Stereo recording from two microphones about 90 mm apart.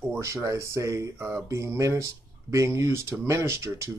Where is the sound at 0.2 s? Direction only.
35° right (ahead or behind).